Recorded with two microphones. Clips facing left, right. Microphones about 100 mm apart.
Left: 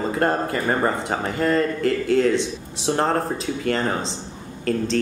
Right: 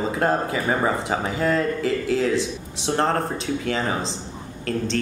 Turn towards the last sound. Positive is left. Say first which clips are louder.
# left 3 dB
turn(degrees=0)  # may be behind; listen again after turning